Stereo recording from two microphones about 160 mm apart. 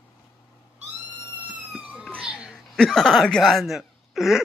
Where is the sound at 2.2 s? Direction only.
5° right (ahead or behind).